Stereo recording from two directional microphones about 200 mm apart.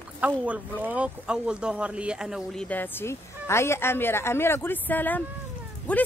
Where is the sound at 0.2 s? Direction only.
5° right (ahead or behind).